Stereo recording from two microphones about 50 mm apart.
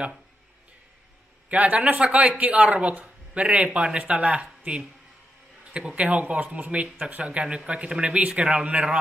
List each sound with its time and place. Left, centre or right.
1.5 s speech: right
5.7 s a man's voice: right